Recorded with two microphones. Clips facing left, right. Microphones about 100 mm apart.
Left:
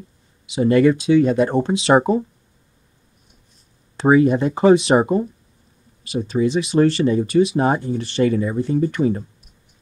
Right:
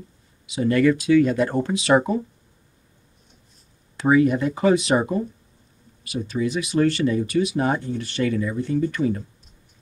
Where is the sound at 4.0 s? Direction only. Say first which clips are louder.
Left 3 dB; 30° left (ahead or behind).